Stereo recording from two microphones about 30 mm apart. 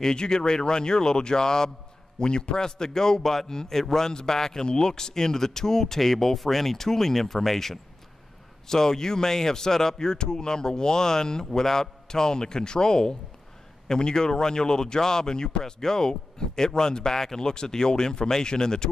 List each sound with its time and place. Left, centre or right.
0.1 s speech: left
4.1 s speech: left